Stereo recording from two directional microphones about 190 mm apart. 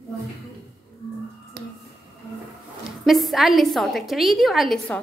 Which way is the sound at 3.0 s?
Centre (ahead or behind).